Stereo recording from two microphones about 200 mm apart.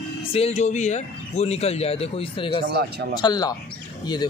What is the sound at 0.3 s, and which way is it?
A man's voice, 30° left (ahead or behind).